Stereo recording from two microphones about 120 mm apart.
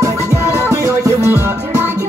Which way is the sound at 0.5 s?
25° right (ahead or behind).